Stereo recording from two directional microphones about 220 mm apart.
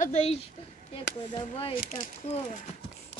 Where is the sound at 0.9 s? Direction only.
25° left (ahead or behind).